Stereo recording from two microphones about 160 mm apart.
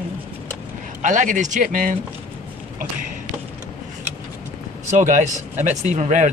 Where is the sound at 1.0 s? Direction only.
50° right (ahead or behind).